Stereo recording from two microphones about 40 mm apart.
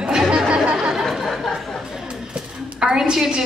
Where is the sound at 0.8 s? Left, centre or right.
Centre.